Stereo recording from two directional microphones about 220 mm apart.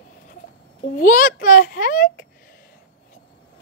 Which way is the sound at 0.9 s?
40° left (ahead or behind).